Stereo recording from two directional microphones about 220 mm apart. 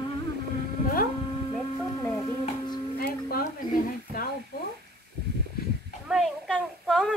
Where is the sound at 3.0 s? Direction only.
40° left (ahead or behind).